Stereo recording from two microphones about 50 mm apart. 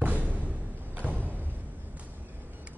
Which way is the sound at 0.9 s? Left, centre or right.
Right.